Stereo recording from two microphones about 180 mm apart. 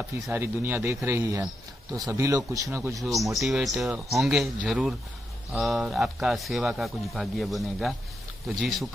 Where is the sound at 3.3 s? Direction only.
Centre (ahead or behind).